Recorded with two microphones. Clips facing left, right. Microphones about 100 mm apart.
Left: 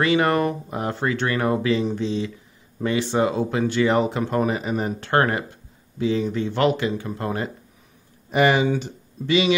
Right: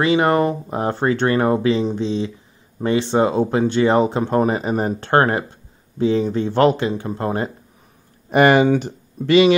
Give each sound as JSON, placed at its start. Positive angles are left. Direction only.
{"t": 0.0, "sound": "speech", "side_deg": -25}
{"t": 8.3, "sound": "speech", "side_deg": -55}